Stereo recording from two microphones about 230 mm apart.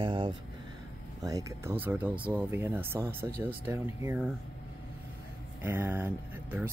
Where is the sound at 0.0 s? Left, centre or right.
Right.